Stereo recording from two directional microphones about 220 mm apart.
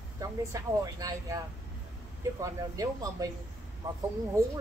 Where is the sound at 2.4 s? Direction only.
15° right (ahead or behind).